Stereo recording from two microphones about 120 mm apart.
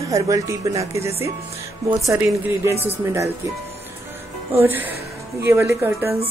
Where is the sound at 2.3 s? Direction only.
20° right (ahead or behind).